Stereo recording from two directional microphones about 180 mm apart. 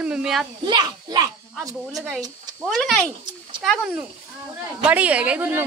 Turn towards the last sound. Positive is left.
turn(degrees=-10)  # may be behind; listen again after turning